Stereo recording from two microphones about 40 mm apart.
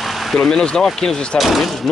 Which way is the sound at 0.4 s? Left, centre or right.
Centre.